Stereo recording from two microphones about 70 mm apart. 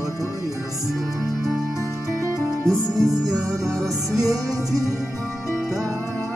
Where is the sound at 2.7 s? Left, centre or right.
Centre.